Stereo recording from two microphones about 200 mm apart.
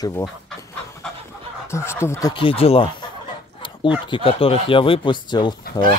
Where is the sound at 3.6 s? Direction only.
25° left (ahead or behind).